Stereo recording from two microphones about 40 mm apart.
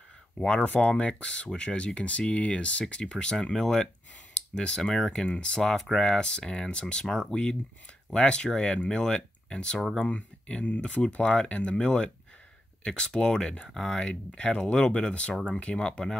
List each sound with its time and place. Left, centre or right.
0.4 s speech: left
8.9 s speech: centre
10.0 s speech: left
11.8 s speech: centre